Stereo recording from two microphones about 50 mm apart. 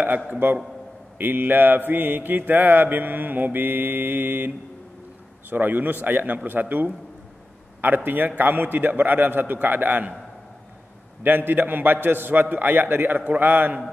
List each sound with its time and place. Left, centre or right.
0.4 s a man's voice: right
1.1 s mantra: right
5.5 s mantra: right
11.2 s mantra: right